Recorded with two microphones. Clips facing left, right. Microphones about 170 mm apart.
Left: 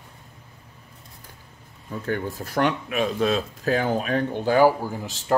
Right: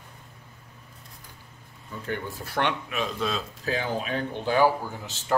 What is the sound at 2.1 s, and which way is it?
Speech, 45° left (ahead or behind).